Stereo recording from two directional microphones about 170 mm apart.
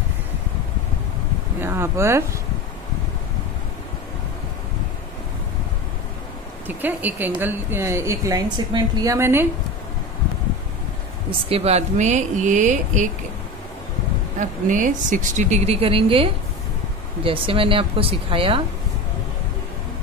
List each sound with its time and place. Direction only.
1.6 s a woman's voice: 15° right (ahead or behind)
6.7 s a woman's voice: 10° right (ahead or behind)
11.2 s speech: 35° right (ahead or behind)
14.4 s speech: 50° right (ahead or behind); by 18.6 s 30° right (ahead or behind)